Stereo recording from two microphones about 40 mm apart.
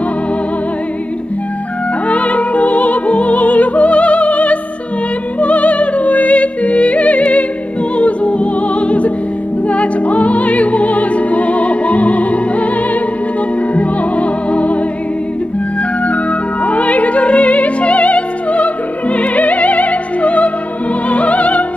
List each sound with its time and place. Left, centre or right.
2.0 s music: left
13.7 s music: left
16.1 s music: left